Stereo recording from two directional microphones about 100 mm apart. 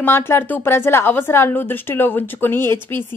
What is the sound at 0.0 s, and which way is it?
A woman's voice, 25° left (ahead or behind).